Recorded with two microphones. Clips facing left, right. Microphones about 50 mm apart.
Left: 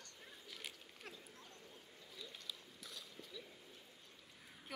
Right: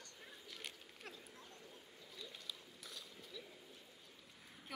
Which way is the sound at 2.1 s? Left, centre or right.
Centre.